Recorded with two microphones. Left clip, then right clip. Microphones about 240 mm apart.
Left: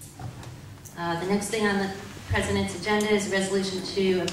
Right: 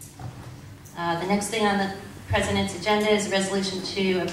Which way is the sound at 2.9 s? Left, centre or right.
Centre.